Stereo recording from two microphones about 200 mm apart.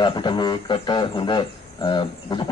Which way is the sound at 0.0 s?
25° left (ahead or behind).